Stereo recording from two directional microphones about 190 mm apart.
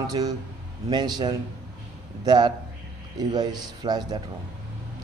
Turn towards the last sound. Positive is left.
turn(degrees=-20)  # may be behind; listen again after turning